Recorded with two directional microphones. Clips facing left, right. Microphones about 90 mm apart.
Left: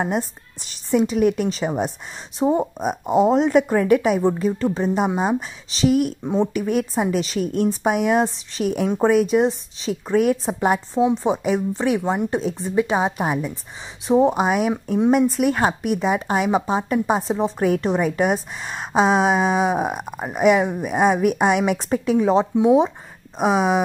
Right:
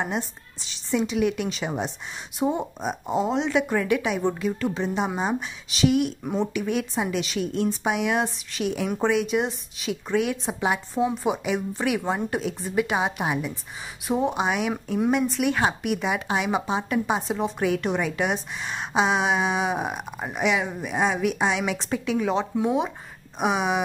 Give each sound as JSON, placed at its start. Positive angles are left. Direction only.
{"t": 0.1, "sound": "a woman's voice", "side_deg": 45}
{"t": 2.6, "sound": "speech", "side_deg": 50}
{"t": 4.3, "sound": "a woman's voice", "side_deg": 30}
{"t": 12.0, "sound": "speech", "side_deg": 15}
{"t": 12.3, "sound": "a woman's voice", "side_deg": 30}